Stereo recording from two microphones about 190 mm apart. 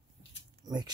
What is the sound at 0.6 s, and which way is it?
Speech, 20° right (ahead or behind).